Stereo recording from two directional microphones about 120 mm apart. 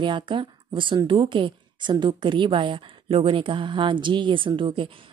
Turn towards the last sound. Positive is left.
turn(degrees=-45)  # may be behind; listen again after turning